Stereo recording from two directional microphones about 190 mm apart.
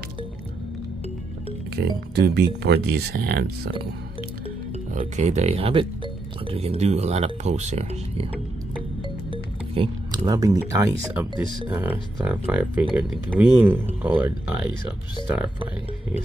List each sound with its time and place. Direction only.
1.8 s speech: 55° right (ahead or behind)
4.9 s speech: 35° right (ahead or behind)
9.3 s speech: 25° right (ahead or behind); by 16.2 s 5° right (ahead or behind)